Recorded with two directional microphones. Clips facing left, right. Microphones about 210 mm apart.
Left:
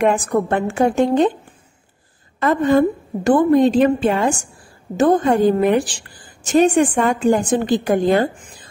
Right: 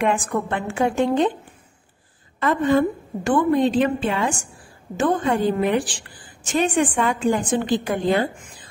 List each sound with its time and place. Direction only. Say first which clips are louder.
0.0 s a woman's voice: left 5 dB; 40° left (ahead or behind)
2.4 s a woman's voice: left 4 dB; 40° left (ahead or behind)